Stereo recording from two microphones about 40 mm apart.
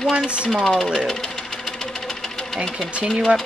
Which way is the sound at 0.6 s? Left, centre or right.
Centre.